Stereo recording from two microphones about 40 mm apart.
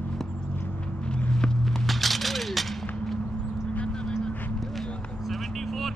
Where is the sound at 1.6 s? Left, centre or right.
Centre.